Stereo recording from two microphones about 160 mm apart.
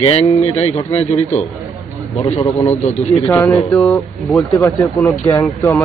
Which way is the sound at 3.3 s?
15° left (ahead or behind).